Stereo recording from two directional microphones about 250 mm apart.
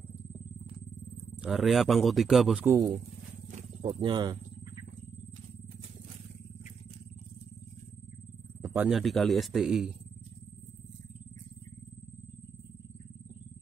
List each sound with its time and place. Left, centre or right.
1.4 s a man's voice: centre
3.5 s speech: right
8.6 s a man's voice: centre